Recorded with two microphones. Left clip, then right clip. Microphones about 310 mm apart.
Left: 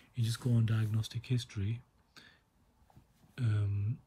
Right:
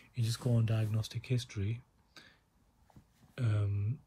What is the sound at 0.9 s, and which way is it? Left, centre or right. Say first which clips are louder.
Speech: right 1 dB; centre.